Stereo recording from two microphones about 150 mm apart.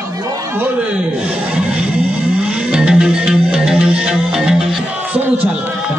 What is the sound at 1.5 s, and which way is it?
Music, 5° right (ahead or behind).